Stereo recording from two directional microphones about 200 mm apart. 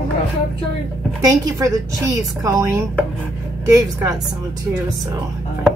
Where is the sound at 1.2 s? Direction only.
15° right (ahead or behind).